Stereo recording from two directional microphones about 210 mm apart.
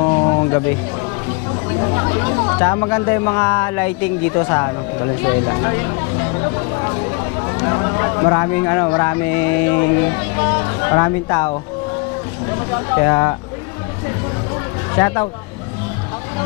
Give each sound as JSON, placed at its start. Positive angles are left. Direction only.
{"t": 0.0, "sound": "a sound", "side_deg": 20}
{"t": 1.8, "sound": "speech", "side_deg": 20}
{"t": 7.5, "sound": "speech", "side_deg": 20}
{"t": 12.9, "sound": "speech", "side_deg": 15}
{"t": 15.0, "sound": "speech", "side_deg": 15}